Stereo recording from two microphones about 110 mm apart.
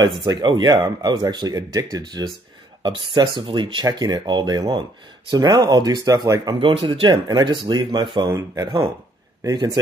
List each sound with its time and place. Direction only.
0.2 s speech: 45° right (ahead or behind)
6.6 s speech: 55° right (ahead or behind)
9.4 s speech: 30° right (ahead or behind)